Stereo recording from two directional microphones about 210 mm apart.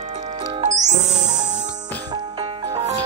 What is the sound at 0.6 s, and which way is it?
Music, 35° right (ahead or behind).